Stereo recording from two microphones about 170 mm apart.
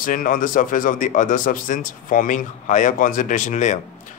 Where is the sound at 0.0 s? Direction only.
55° left (ahead or behind).